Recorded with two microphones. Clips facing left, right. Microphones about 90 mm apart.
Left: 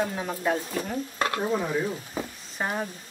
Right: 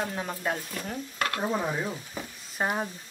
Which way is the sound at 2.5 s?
10° right (ahead or behind).